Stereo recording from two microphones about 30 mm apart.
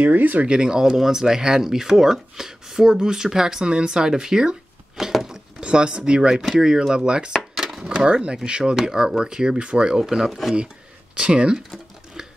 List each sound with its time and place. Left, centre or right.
0.0 s speech: right
0.5 s speech: right
5.0 s speech: centre
5.6 s speech: right
9.9 s speech: centre
10.2 s speech: centre
11.1 s speech: right